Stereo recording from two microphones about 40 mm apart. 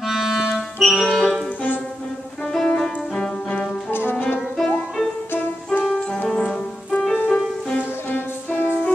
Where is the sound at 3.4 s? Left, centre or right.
Left.